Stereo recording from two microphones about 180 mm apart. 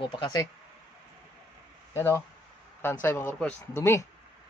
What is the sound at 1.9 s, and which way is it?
Speech, 15° left (ahead or behind).